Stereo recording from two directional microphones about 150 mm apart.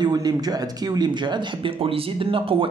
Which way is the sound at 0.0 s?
25° right (ahead or behind).